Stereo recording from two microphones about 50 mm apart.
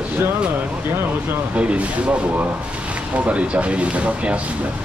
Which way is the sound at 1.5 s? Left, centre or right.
Right.